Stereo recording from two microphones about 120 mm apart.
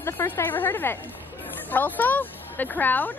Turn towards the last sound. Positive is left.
turn(degrees=15)  # may be behind; listen again after turning